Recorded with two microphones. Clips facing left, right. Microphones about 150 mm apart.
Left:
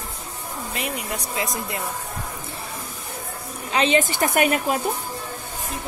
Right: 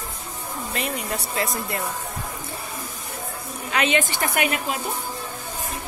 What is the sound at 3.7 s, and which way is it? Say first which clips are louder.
A woman's voice: left 3 dB; 30° left (ahead or behind).